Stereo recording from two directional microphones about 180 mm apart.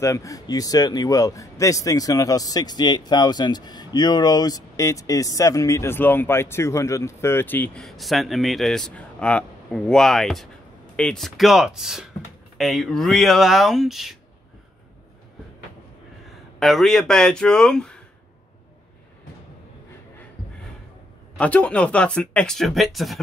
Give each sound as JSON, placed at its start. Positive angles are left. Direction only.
{"t": 0.0, "sound": "a man's voice", "side_deg": 15}
{"t": 16.5, "sound": "speech", "side_deg": 0}
{"t": 21.4, "sound": "speech", "side_deg": 10}